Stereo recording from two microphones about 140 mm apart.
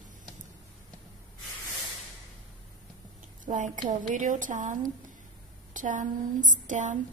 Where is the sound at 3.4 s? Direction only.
65° right (ahead or behind).